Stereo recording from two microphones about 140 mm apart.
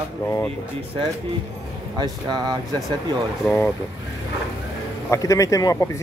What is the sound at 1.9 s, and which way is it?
Speech, 30° right (ahead or behind).